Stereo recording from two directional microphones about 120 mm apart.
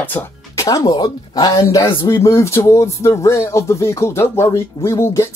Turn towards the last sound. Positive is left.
turn(degrees=25)  # may be behind; listen again after turning